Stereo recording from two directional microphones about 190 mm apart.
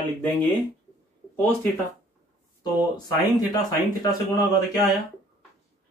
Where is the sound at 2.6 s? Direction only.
20° left (ahead or behind).